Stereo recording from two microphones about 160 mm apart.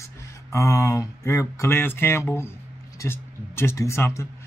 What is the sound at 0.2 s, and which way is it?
Speech, 20° left (ahead or behind).